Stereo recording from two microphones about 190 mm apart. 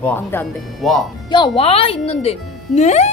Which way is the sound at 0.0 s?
10° left (ahead or behind).